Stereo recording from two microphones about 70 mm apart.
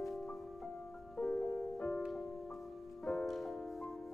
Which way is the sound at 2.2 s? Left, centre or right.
Centre.